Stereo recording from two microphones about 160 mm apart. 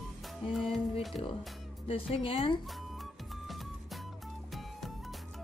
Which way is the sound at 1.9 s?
35° left (ahead or behind).